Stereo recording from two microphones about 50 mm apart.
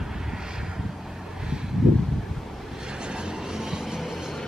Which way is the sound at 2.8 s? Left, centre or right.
Centre.